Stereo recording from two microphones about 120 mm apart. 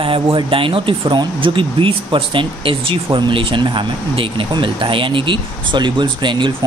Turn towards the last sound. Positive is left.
turn(degrees=-40)  # may be behind; listen again after turning